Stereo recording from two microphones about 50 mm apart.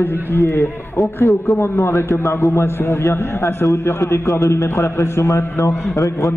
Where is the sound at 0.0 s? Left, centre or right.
Left.